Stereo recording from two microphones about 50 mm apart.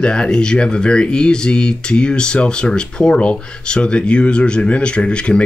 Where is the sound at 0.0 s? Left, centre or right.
Centre.